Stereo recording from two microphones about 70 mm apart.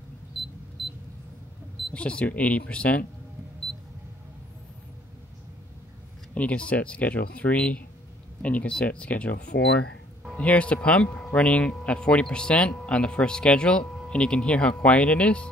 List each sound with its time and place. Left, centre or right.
0.8 s single-lens reflex camera: centre
2.0 s speech: centre
6.3 s speech: centre
10.3 s speech: centre